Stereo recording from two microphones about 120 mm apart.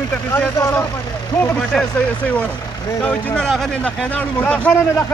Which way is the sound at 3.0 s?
10° left (ahead or behind).